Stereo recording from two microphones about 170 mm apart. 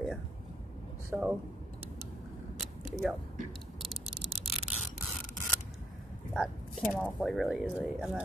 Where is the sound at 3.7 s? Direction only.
Centre (ahead or behind).